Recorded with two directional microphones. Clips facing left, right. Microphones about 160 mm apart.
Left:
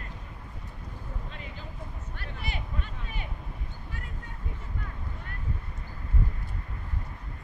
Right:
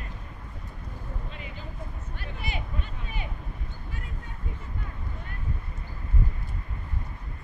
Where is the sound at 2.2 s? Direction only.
15° right (ahead or behind).